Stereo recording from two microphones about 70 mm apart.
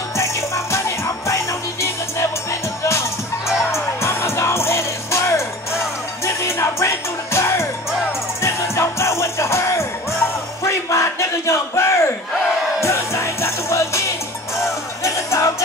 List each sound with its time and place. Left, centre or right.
0.2 s music: left
10.6 s a sound: left
12.8 s music: left
15.0 s music: left